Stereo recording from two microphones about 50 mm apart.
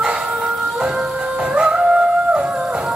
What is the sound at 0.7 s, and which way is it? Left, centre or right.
Music, centre.